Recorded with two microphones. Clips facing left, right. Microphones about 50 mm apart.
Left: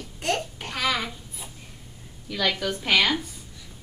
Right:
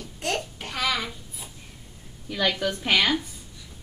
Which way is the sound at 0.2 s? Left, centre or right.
Centre.